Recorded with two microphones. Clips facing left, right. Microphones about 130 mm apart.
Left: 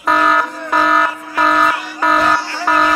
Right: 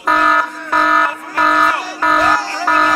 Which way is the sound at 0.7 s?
Centre (ahead or behind).